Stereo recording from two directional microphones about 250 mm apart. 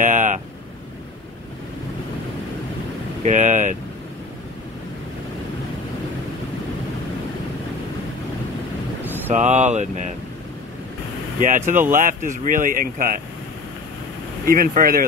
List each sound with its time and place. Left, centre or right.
0.0 s vehicle: right
3.2 s vehicle: right
9.3 s speech: right
11.4 s speech: right
14.4 s speech: right